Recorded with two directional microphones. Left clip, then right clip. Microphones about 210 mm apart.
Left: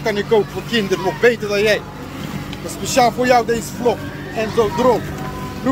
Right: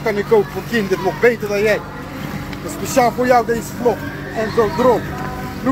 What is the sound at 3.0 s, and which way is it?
Speech, 10° left (ahead or behind).